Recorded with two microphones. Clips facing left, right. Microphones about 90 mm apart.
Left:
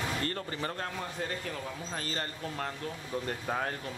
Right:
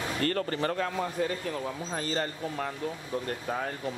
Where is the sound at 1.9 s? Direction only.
25° right (ahead or behind).